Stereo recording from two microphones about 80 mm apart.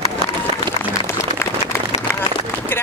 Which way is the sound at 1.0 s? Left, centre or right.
Left.